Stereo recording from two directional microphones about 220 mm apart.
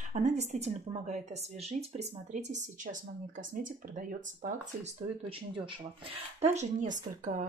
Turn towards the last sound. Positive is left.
turn(degrees=-35)  # may be behind; listen again after turning